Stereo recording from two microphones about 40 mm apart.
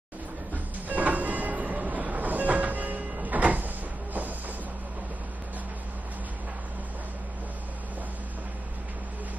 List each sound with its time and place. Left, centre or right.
0.8 s train: right